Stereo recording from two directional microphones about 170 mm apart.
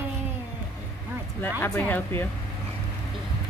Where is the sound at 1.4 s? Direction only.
10° left (ahead or behind).